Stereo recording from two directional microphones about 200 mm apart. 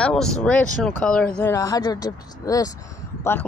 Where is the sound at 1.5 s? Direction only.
15° left (ahead or behind).